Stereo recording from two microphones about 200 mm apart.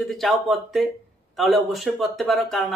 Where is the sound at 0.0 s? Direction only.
Centre (ahead or behind).